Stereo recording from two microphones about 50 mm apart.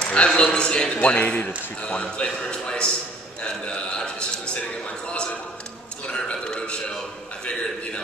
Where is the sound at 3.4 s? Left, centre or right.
Centre.